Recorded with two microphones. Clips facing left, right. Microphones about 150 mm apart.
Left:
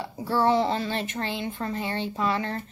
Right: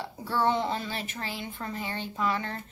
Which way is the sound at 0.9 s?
25° left (ahead or behind).